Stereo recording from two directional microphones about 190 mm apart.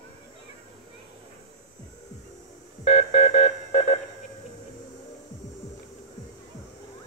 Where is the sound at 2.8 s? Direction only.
40° left (ahead or behind).